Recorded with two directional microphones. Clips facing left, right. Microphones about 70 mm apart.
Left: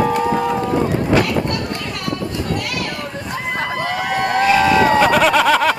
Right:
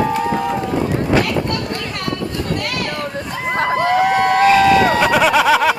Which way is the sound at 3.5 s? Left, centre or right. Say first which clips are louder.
Right 7 dB; right.